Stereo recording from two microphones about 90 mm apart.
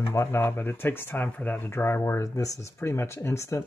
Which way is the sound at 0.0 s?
30° left (ahead or behind).